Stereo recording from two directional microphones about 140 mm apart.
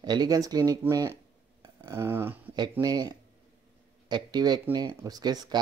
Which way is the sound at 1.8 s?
20° right (ahead or behind).